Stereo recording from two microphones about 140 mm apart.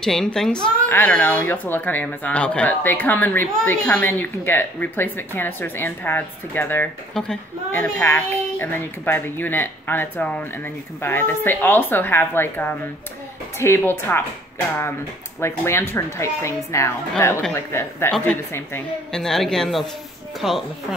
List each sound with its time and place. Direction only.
0.0 s speech: 5° left (ahead or behind)
15.4 s a woman's voice: 15° left (ahead or behind)
19.1 s speech: 5° left (ahead or behind)